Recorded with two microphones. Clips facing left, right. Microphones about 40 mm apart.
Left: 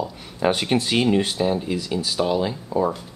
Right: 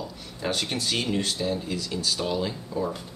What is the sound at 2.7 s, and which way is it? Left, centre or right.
Speech, left.